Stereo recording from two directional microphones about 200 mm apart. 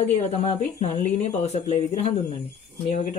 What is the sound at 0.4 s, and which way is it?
Speech, 35° left (ahead or behind).